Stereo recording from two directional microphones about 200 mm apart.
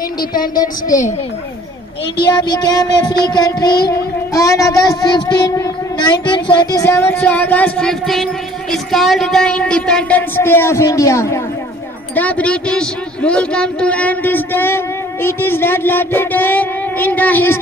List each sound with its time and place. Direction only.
0.2 s speech: 45° left (ahead or behind)
2.3 s a sound: 20° left (ahead or behind)
3.3 s child singing: 20° left (ahead or behind)